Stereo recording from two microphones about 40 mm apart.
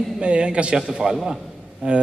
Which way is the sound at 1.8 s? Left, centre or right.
Right.